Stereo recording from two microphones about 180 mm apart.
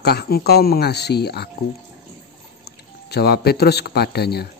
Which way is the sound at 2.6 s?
60° left (ahead or behind).